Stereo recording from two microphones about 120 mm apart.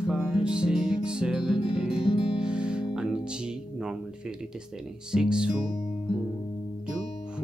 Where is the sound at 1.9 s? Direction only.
45° left (ahead or behind).